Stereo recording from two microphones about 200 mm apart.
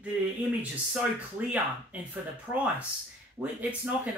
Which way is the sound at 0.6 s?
5° right (ahead or behind).